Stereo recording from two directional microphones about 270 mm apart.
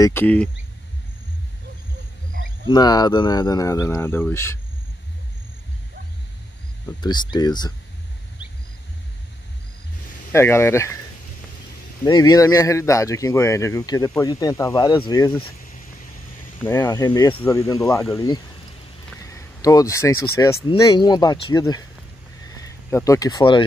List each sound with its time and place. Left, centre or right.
0.0 s speech: centre
2.7 s speech: centre
6.9 s speech: centre
10.3 s speech: centre
12.0 s speech: centre
16.6 s speech: centre